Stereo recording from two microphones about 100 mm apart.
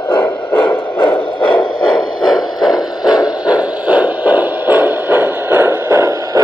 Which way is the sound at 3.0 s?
10° right (ahead or behind).